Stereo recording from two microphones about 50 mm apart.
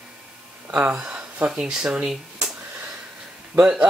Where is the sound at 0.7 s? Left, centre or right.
Right.